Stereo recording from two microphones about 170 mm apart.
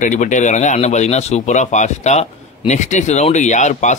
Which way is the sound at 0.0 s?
45° left (ahead or behind).